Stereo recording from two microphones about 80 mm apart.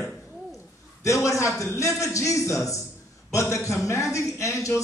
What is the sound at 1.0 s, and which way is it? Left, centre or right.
Speech, left.